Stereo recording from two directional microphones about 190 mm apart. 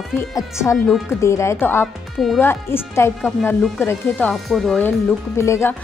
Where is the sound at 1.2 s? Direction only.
15° left (ahead or behind).